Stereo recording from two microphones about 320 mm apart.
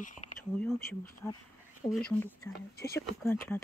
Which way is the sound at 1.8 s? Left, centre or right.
Centre.